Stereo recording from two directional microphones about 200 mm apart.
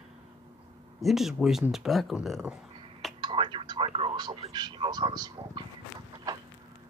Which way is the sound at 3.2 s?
25° right (ahead or behind).